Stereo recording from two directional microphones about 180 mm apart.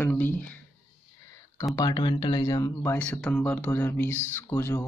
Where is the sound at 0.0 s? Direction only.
10° left (ahead or behind).